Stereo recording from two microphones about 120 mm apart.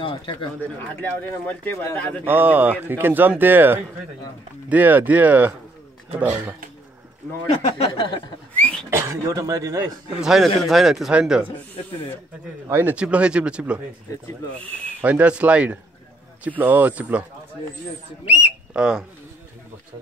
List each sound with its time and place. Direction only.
0.0 s speech: 45° left (ahead or behind)
0.6 s speech: 15° left (ahead or behind)
2.2 s speech: 15° right (ahead or behind)
7.6 s speech: 50° left (ahead or behind)
8.5 s a sound: 10° left (ahead or behind)
8.9 s speech: 25° right (ahead or behind)
10.2 s speech: centre (ahead or behind)
12.6 s speech: 20° right (ahead or behind)
12.9 s speech: 10° right (ahead or behind)
15.0 s speech: 15° right (ahead or behind)
18.2 s speech: 15° right (ahead or behind)